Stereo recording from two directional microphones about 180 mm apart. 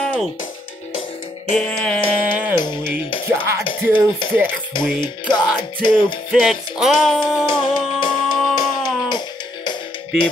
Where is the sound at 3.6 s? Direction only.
25° left (ahead or behind).